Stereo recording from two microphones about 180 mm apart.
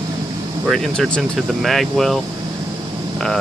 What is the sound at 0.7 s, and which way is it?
Speech, centre (ahead or behind).